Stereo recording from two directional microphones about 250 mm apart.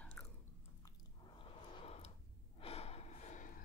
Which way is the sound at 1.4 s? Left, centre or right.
Left.